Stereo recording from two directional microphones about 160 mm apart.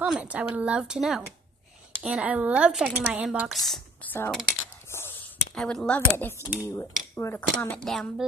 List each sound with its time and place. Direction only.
0.0 s a woman's voice: 5° right (ahead or behind)
4.1 s speech: 10° left (ahead or behind)
4.8 s a sound: 15° left (ahead or behind)
5.5 s speech: 5° left (ahead or behind)
6.3 s speech: 10° right (ahead or behind)
6.7 s mechanisms: 15° left (ahead or behind)
7.5 s a woman's voice: 5° left (ahead or behind)